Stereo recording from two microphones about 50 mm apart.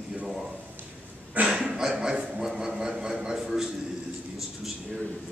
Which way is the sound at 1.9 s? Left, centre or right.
Centre.